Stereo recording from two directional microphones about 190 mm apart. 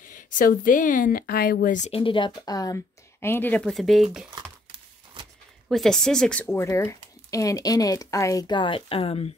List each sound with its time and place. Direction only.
0.1 s speech: 45° left (ahead or behind); by 4.0 s centre (ahead or behind)
5.7 s speech: centre (ahead or behind)
6.4 s speech: 15° left (ahead or behind); by 9.3 s 30° left (ahead or behind)